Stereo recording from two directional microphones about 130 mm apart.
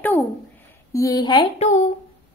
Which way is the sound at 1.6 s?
65° left (ahead or behind).